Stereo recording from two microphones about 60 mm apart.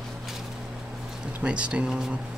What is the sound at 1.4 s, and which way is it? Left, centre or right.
Speech, centre.